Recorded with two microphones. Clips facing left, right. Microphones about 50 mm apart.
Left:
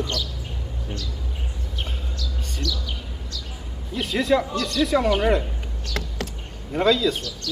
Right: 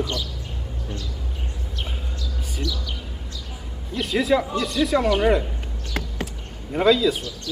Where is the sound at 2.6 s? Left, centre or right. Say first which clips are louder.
Even; centre.